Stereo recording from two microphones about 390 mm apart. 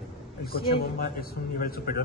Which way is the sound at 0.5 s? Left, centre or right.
Left.